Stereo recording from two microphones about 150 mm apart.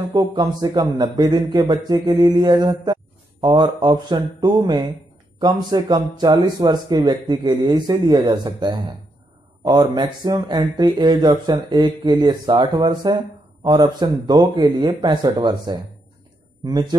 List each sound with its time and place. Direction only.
0.1 s a man's voice: 30° right (ahead or behind)